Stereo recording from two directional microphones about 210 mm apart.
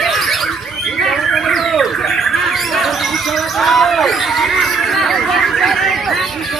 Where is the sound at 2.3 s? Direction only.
Centre (ahead or behind).